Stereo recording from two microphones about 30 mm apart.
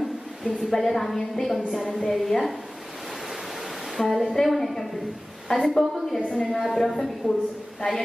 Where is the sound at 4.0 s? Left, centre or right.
Centre.